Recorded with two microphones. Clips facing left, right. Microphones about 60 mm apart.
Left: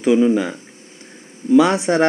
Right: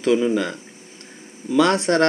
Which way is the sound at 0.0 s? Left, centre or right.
Centre.